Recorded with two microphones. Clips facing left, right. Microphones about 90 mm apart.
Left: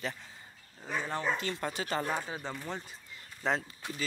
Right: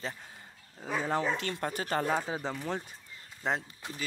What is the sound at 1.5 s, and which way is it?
Speech, 50° right (ahead or behind).